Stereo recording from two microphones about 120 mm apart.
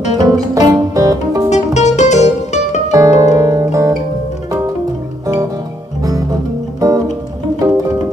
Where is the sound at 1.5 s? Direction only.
70° left (ahead or behind).